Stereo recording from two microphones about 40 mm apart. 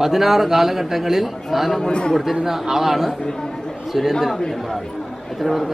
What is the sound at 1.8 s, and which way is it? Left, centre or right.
Speech, left.